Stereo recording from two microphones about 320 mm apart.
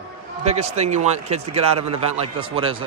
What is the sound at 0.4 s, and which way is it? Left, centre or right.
A man's voice, right.